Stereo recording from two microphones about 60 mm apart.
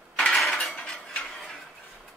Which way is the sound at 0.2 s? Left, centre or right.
Centre.